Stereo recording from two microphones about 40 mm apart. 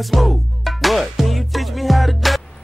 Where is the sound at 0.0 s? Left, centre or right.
Centre.